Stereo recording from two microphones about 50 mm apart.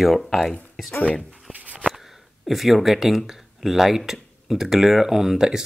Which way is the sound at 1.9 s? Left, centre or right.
Centre.